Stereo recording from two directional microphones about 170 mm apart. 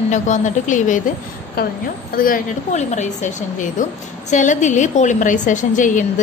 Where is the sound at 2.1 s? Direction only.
55° left (ahead or behind).